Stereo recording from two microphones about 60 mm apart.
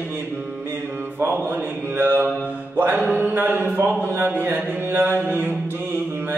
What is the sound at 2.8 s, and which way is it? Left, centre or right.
Music, right.